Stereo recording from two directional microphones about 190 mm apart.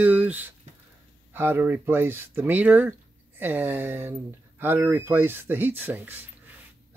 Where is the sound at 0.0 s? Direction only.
10° right (ahead or behind).